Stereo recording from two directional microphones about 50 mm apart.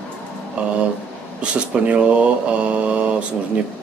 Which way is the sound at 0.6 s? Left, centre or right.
Right.